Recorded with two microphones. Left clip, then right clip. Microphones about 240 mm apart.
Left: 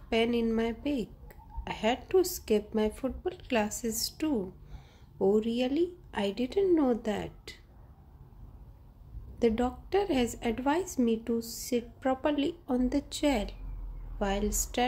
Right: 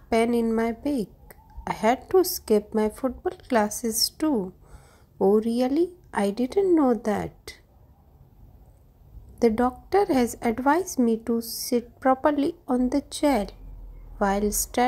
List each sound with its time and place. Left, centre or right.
0.1 s a woman's voice: centre
9.4 s a woman's voice: centre